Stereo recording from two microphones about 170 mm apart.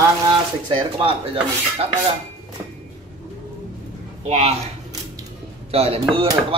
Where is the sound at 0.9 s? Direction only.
30° right (ahead or behind).